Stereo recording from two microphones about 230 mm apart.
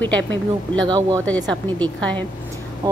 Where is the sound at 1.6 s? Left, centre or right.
Centre.